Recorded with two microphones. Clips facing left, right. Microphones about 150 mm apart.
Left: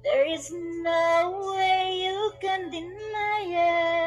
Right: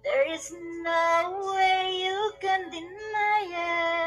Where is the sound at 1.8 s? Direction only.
40° right (ahead or behind).